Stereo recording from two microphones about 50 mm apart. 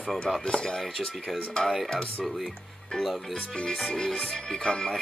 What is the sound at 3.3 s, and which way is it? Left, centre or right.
Music, centre.